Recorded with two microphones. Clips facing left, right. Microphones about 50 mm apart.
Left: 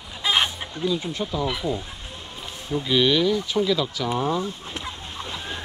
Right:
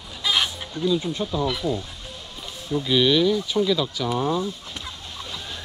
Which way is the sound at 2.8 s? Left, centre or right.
Left.